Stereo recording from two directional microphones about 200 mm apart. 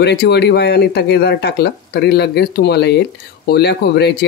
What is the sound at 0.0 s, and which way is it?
Speech, 55° left (ahead or behind).